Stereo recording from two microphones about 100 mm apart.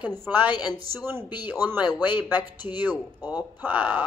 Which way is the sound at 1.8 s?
40° left (ahead or behind).